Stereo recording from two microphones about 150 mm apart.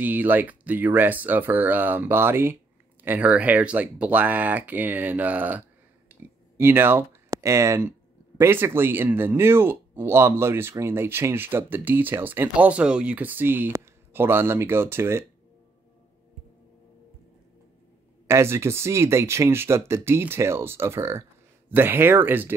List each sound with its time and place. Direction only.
0.0 s speech: 10° right (ahead or behind)
18.2 s speech: 15° right (ahead or behind)